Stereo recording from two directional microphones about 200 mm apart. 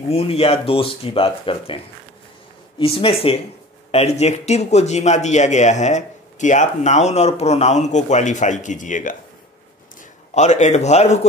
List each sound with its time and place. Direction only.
0.1 s speech: 30° left (ahead or behind)
2.8 s speech: 30° left (ahead or behind)
10.3 s speech: 35° left (ahead or behind)